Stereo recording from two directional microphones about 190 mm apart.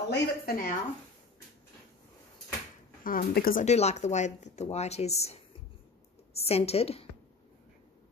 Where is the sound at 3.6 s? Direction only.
35° left (ahead or behind).